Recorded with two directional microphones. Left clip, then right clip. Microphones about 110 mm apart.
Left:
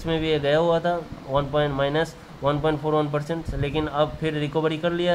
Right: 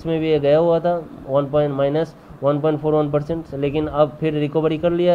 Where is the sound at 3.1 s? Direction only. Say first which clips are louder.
Right 5 dB; 30° right (ahead or behind).